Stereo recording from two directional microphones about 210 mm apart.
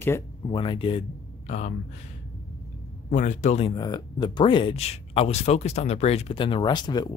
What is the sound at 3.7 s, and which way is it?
Speech, 20° left (ahead or behind).